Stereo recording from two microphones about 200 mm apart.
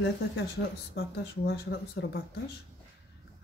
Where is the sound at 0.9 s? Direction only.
55° left (ahead or behind).